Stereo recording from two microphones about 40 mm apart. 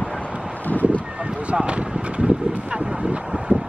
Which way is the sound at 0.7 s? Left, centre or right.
Left.